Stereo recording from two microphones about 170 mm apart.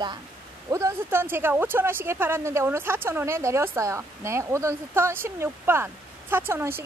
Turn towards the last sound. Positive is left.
turn(degrees=-15)  # may be behind; listen again after turning